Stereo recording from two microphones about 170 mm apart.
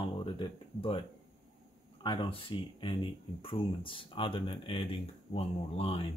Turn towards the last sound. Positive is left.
turn(degrees=35)  # may be behind; listen again after turning